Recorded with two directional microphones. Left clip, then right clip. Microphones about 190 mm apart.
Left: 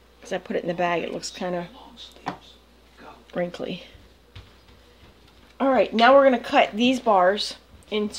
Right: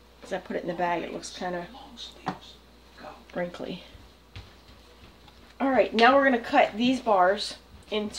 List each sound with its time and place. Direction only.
0.2 s speech: 40° left (ahead or behind)
3.3 s speech: 35° left (ahead or behind)
5.6 s a woman's voice: 45° left (ahead or behind)